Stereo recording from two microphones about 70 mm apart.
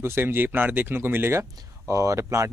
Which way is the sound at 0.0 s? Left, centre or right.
Right.